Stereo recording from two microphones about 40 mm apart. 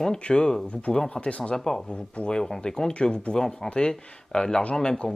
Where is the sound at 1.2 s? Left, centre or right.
Left.